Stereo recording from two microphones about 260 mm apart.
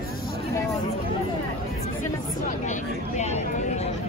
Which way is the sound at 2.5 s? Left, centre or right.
Left.